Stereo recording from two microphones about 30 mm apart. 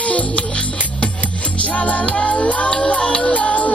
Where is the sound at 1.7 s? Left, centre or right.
Left.